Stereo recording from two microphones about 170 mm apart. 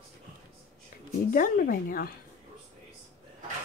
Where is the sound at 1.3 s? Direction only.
55° left (ahead or behind).